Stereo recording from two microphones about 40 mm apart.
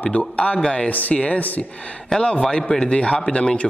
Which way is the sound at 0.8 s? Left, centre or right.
Left.